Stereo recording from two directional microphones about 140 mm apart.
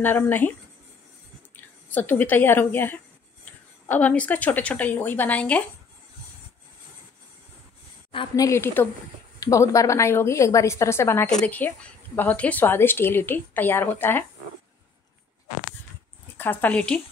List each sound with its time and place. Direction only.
0.0 s speech: 15° left (ahead or behind)
1.6 s speech: 15° left (ahead or behind)
8.4 s a woman's voice: 20° left (ahead or behind)
16.3 s speech: 10° left (ahead or behind)